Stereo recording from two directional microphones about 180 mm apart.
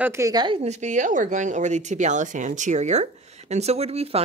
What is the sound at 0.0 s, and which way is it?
Speech, 15° right (ahead or behind).